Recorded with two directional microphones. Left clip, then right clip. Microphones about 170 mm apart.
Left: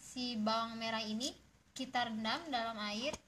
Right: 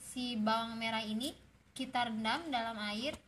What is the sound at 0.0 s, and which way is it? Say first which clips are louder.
A woman's voice: right 2 dB; 15° left (ahead or behind).